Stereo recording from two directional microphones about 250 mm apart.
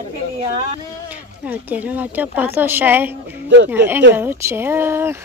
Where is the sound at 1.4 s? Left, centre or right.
Centre.